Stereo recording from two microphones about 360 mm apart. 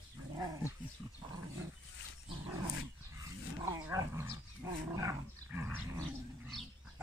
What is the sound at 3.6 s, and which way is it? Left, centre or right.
Dog, centre.